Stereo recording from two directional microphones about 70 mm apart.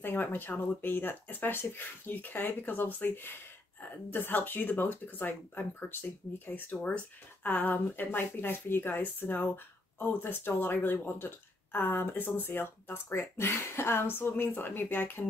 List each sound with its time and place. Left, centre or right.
0.0 s speech: left